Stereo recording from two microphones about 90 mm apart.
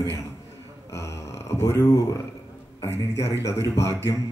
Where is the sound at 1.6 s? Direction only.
30° left (ahead or behind).